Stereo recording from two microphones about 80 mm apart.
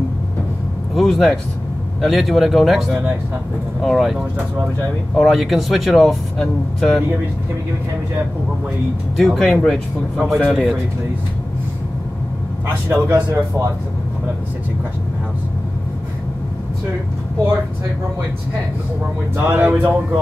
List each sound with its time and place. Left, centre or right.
0.9 s speech: centre
5.2 s speech: centre
9.1 s speech: centre
10.5 s speech: centre
12.9 s a man's voice: right
19.3 s speech: right